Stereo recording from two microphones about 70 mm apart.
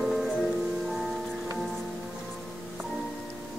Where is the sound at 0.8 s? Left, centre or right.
Centre.